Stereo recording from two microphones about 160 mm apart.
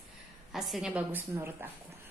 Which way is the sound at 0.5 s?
Centre (ahead or behind).